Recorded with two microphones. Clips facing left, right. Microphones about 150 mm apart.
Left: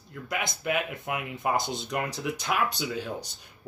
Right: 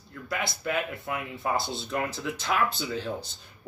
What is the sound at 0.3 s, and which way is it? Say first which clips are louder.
Speech: left 1 dB; 20° left (ahead or behind).